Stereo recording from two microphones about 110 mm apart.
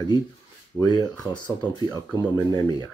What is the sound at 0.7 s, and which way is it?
Speech, 40° left (ahead or behind).